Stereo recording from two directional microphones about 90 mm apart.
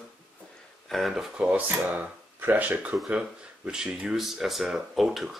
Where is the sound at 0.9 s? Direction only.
Centre (ahead or behind).